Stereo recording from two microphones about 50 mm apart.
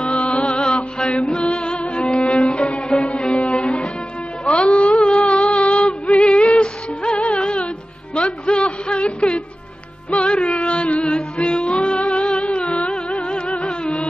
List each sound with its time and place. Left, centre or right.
0.0 s music: left
4.5 s a sound: centre
5.7 s music: left